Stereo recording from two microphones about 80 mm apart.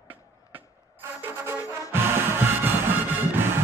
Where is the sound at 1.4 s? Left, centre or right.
Right.